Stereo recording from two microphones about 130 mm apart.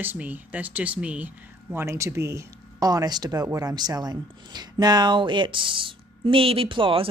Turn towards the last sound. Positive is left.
turn(degrees=-40)  # may be behind; listen again after turning